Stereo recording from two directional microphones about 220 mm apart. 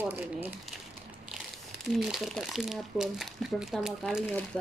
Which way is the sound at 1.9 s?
Centre (ahead or behind).